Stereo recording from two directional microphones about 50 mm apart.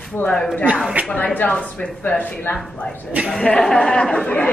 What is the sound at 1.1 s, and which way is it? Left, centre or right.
Speech, left.